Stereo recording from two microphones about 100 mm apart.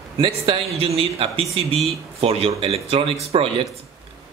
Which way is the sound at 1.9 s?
85° right.